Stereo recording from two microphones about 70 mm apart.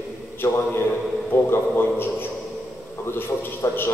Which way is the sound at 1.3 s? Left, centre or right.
Left.